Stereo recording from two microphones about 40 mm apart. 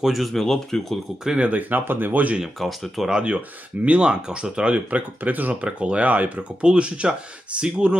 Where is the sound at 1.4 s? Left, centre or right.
Right.